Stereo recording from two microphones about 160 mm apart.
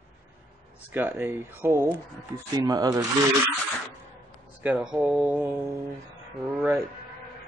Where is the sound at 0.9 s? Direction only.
10° right (ahead or behind).